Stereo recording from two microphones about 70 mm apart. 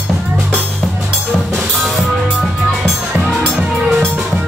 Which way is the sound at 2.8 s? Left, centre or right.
Centre.